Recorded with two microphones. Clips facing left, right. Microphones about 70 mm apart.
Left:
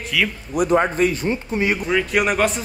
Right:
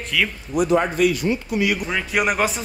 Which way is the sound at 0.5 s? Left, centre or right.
Left.